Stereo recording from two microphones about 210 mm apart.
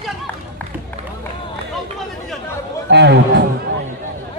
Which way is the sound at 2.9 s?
55° right (ahead or behind).